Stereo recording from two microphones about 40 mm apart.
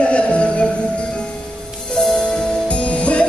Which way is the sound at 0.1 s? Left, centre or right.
Left.